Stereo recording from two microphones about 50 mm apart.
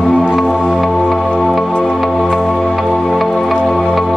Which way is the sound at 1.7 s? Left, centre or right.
Left.